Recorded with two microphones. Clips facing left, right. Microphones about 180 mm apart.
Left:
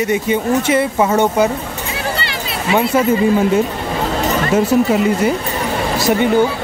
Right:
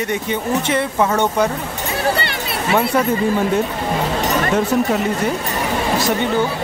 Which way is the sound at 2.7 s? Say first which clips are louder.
Left 3 dB; centre (ahead or behind).